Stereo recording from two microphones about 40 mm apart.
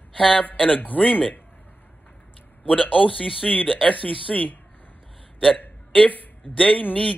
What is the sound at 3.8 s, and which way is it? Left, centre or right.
Speech, left.